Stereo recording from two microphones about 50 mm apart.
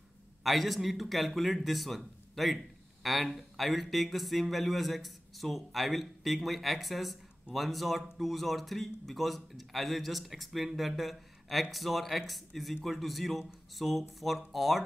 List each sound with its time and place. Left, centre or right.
0.4 s a man's voice: centre